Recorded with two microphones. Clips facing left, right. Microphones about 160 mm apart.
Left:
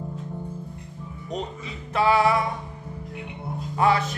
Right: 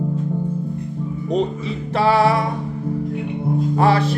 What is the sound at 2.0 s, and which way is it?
Music, 35° right (ahead or behind).